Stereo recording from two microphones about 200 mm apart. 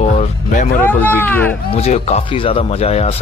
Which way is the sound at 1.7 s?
30° left (ahead or behind).